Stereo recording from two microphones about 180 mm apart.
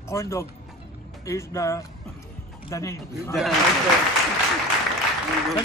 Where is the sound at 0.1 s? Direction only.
15° left (ahead or behind).